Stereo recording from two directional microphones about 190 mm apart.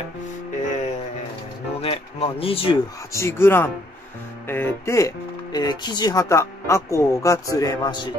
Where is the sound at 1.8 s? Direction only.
30° left (ahead or behind).